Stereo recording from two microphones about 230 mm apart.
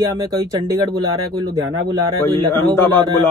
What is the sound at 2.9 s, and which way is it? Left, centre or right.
Speech, centre.